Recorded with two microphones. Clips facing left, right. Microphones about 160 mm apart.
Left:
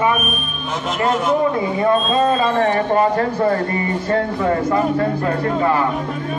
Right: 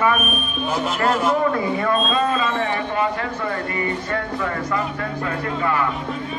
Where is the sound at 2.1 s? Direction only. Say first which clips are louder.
Left 4 dB; 35° left (ahead or behind).